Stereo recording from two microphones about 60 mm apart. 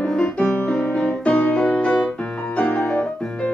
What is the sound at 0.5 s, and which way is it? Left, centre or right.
Music, left.